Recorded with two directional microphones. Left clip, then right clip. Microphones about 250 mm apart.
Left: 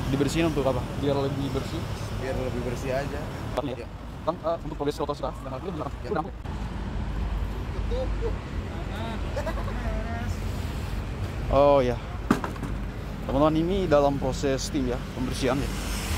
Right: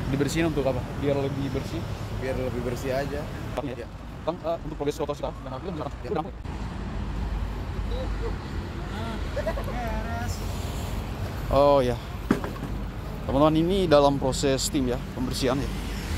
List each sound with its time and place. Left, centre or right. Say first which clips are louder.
0.2 s speech: even; centre
4.3 s speech: left 1 dB; centre
11.5 s speech: even; centre
12.3 s a sound: left 1 dB; centre
13.3 s speech: right 2 dB; centre